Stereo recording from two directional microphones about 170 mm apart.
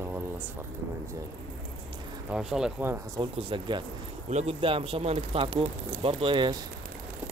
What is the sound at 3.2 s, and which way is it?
A man's voice, 30° right (ahead or behind).